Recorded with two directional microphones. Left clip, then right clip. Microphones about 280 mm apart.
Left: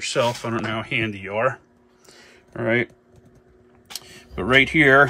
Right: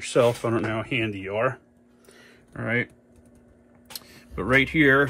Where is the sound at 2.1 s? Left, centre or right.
Centre.